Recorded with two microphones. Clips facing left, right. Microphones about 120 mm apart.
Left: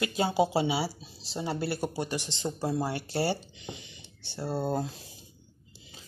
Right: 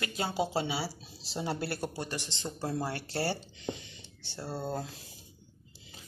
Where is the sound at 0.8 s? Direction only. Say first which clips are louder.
Left 4 dB; centre (ahead or behind); by 4.8 s 15° left (ahead or behind).